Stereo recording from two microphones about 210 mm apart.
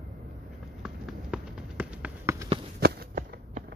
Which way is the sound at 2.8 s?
45° right (ahead or behind).